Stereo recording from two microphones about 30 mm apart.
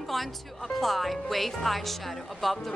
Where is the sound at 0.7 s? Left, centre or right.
Centre.